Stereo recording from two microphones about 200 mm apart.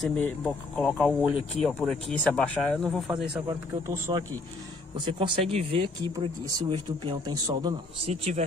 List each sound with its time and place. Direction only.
0.0 s speech: 5° left (ahead or behind)
3.4 s a man's voice: 20° right (ahead or behind)
7.0 s a man's voice: 20° right (ahead or behind)
8.1 s speech: 30° right (ahead or behind)